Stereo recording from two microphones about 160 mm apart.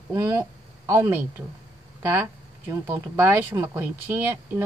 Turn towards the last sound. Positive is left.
turn(degrees=-15)  # may be behind; listen again after turning